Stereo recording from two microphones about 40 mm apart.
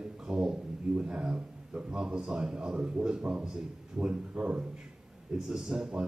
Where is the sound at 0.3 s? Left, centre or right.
Centre.